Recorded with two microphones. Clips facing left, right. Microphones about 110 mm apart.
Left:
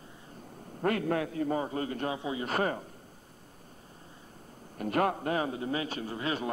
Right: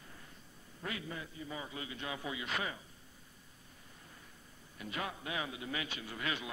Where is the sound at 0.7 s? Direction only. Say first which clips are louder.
Left 14 dB; 55° left (ahead or behind).